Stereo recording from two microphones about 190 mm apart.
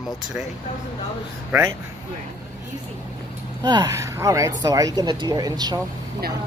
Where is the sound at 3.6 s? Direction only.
20° right (ahead or behind).